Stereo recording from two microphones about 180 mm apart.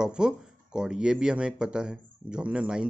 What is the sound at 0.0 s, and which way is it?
Speech, 5° right (ahead or behind).